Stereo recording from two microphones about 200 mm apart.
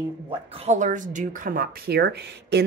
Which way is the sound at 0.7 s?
40° right (ahead or behind).